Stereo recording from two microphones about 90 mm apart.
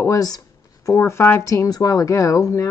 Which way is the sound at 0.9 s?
35° left (ahead or behind).